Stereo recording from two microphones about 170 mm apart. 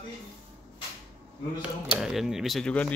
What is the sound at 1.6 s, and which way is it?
Speech, centre (ahead or behind).